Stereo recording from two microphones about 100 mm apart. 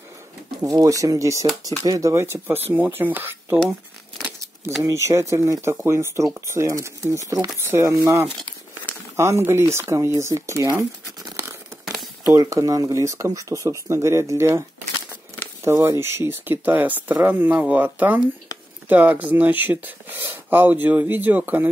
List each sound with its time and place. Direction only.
0.6 s speech: 35° right (ahead or behind)
4.8 s speech: 30° right (ahead or behind)
11.8 s a sound: centre (ahead or behind)
12.4 s speech: 35° right (ahead or behind)
15.6 s speech: 25° right (ahead or behind)